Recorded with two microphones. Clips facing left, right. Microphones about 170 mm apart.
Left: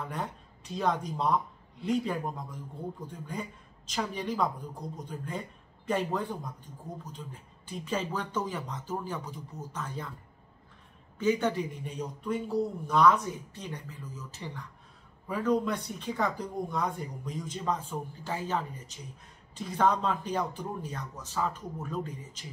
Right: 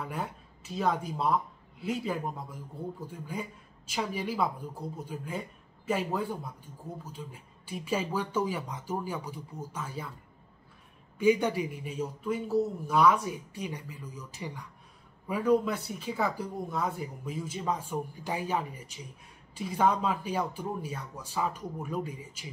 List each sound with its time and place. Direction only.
0.0 s speech: 5° right (ahead or behind)
11.1 s speech: 10° right (ahead or behind)